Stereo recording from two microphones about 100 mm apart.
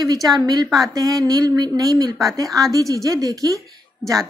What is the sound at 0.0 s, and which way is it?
A woman's voice, 40° right (ahead or behind).